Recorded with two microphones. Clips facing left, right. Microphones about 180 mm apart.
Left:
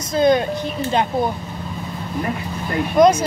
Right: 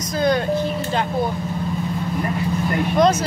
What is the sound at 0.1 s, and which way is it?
Vehicle, 20° left (ahead or behind).